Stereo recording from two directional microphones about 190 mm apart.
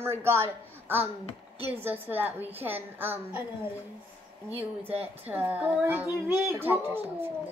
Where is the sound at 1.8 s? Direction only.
10° right (ahead or behind).